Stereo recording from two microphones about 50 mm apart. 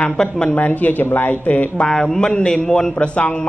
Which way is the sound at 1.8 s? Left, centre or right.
Centre.